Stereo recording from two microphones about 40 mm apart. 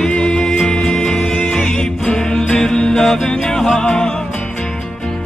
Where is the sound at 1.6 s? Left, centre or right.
Left.